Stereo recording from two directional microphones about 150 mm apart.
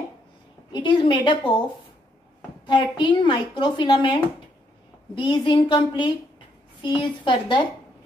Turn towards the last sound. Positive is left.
turn(degrees=30)  # may be behind; listen again after turning